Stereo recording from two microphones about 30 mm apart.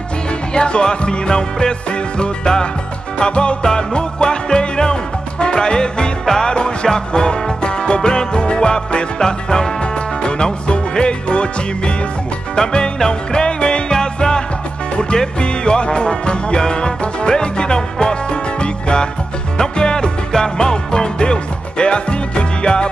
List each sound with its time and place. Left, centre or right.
0.6 s music: left
12.5 s music: left
17.0 s speech: left
17.7 s music: left